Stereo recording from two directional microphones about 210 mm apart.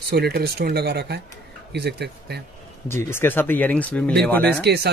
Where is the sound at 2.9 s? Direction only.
10° left (ahead or behind).